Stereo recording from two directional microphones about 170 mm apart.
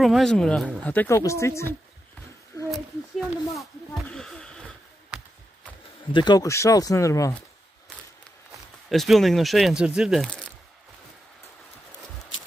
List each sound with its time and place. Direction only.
0.0 s speech: centre (ahead or behind)
2.7 s a sound: centre (ahead or behind)
6.1 s speech: 25° left (ahead or behind)
8.8 s speech: centre (ahead or behind)